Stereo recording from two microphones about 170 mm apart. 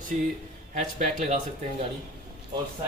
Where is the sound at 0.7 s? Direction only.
45° right (ahead or behind).